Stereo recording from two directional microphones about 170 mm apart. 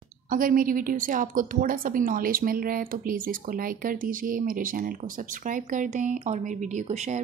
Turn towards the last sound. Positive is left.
turn(degrees=-40)  # may be behind; listen again after turning